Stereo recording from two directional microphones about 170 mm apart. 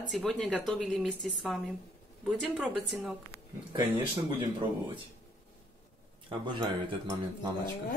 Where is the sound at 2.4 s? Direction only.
Centre (ahead or behind).